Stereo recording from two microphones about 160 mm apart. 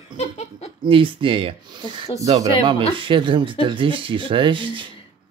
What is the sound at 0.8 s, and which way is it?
Speech, 30° right (ahead or behind).